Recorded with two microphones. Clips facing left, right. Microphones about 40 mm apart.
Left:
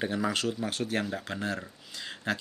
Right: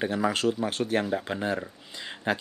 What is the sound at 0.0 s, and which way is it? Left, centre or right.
Speech, centre.